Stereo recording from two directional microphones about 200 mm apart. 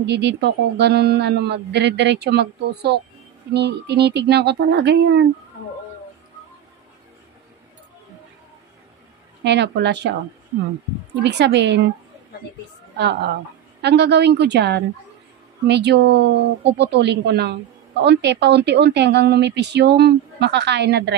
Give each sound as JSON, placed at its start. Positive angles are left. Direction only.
{"t": 0.0, "sound": "a woman's voice", "side_deg": -60}
{"t": 9.4, "sound": "a woman's voice", "side_deg": -60}
{"t": 11.2, "sound": "a woman's voice", "side_deg": -60}
{"t": 12.9, "sound": "a woman's voice", "side_deg": -60}